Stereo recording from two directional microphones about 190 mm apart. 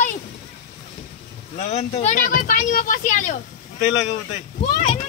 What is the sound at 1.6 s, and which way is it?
Speech, 35° left (ahead or behind).